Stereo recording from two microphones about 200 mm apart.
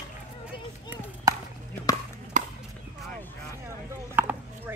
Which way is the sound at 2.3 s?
35° right (ahead or behind).